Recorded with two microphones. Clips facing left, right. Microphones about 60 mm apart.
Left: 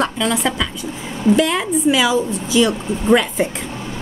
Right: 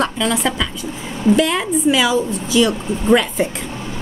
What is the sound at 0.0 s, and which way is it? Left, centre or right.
A woman's voice, centre.